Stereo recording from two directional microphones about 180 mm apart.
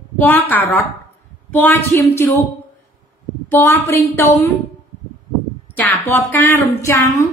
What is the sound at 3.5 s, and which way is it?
Speech, 10° left (ahead or behind).